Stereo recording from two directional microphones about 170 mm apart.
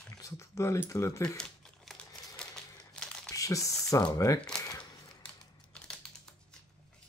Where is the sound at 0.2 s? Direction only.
15° left (ahead or behind).